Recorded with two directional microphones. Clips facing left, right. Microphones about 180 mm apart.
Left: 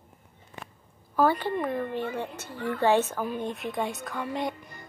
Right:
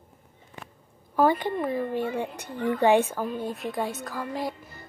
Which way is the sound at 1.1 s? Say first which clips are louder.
Right 2 dB; 15° right (ahead or behind).